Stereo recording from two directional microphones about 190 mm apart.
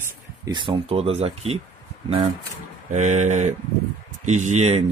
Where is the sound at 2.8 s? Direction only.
40° right (ahead or behind).